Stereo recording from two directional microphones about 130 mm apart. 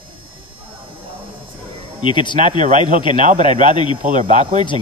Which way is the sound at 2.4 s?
70° right (ahead or behind).